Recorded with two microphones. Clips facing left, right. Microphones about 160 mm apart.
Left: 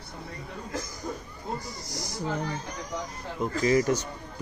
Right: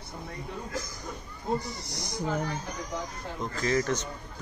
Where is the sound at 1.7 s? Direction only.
20° right (ahead or behind).